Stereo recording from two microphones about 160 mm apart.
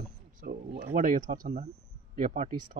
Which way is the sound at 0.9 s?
55° right (ahead or behind).